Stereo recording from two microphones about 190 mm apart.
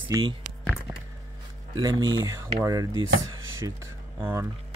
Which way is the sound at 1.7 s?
25° right (ahead or behind).